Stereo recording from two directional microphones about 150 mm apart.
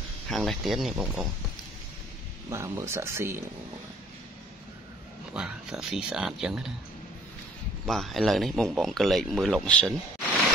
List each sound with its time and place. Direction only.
0.3 s speech: centre (ahead or behind)
2.5 s speech: 20° right (ahead or behind)
5.3 s speech: 5° right (ahead or behind)
7.8 s speech: centre (ahead or behind)